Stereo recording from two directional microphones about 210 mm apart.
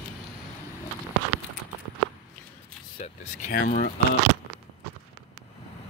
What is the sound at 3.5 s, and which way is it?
Speech, 40° left (ahead or behind).